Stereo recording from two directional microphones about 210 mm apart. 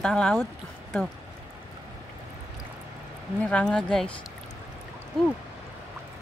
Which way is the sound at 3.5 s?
5° left (ahead or behind).